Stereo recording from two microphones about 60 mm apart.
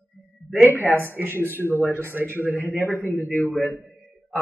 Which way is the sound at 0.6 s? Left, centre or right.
Left.